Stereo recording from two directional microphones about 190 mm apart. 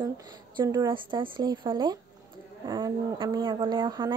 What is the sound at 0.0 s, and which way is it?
Speech, 20° right (ahead or behind).